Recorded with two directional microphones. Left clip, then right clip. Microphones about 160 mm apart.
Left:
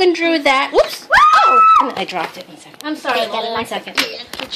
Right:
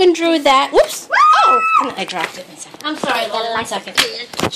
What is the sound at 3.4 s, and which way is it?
Speech, 50° left (ahead or behind).